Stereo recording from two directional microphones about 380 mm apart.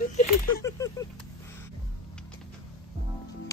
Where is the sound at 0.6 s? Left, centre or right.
Centre.